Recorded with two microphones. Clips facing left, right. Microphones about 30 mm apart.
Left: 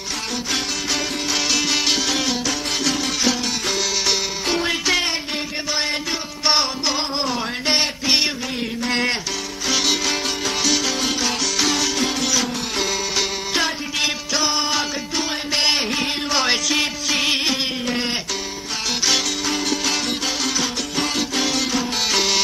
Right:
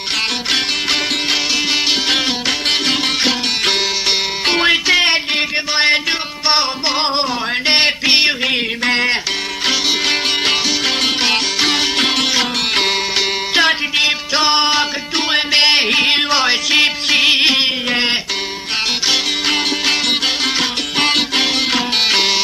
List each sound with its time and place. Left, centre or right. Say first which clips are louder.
1.5 s music: right 4 dB; right
2.0 s music: right 5 dB; right
5.0 s a sound: right 9 dB; right
7.0 s music: right 5 dB; right
10.0 s music: right 7 dB; right
19.4 s music: right 6 dB; right